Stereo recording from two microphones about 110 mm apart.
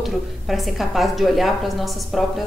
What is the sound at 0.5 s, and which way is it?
A woman's voice, centre (ahead or behind).